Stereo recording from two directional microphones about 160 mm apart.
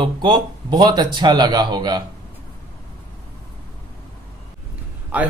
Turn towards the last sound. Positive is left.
turn(degrees=-10)  # may be behind; listen again after turning